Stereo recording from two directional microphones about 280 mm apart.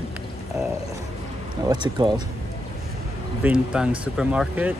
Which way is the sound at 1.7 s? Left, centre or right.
Centre.